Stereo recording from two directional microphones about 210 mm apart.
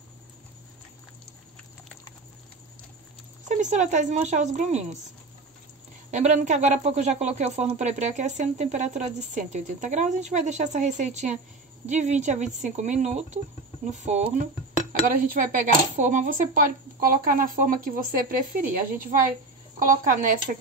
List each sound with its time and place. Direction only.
3.4 s speech: 35° right (ahead or behind)
6.1 s speech: 35° right (ahead or behind)